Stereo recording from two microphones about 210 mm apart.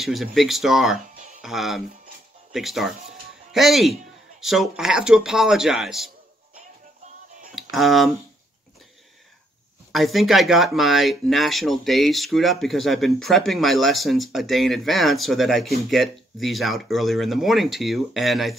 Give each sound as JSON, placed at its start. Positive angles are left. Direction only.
{"t": 0.0, "sound": "speech", "side_deg": 0}
{"t": 7.7, "sound": "speech", "side_deg": 0}
{"t": 9.9, "sound": "speech", "side_deg": 0}